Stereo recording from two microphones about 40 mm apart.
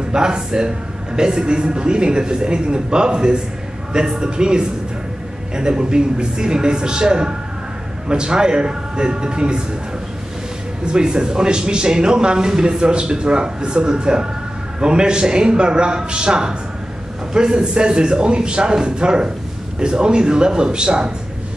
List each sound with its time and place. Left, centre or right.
0.1 s speech: centre
10.9 s speech: centre